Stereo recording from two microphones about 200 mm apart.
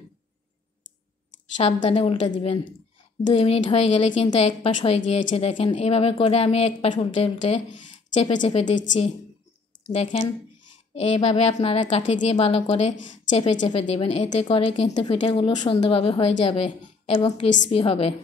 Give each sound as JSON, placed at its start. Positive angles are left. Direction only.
{"t": 1.6, "sound": "speech", "side_deg": 30}
{"t": 9.9, "sound": "a woman's voice", "side_deg": 30}